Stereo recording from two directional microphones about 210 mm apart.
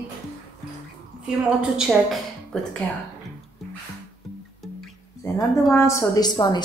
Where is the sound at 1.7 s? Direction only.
Centre (ahead or behind).